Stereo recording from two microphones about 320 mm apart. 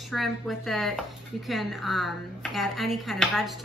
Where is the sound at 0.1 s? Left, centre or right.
Centre.